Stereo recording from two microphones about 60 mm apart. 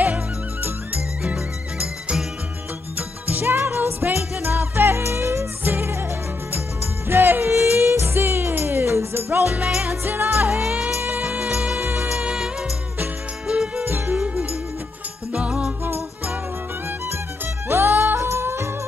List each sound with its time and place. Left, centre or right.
1.2 s music: centre
3.0 s jingle bell: right
5.6 s music: right
7.1 s music: right
11.2 s music: centre
11.8 s music: right
12.2 s music: centre
13.5 s music: centre
13.8 s music: right
14.1 s music: right
17.6 s music: right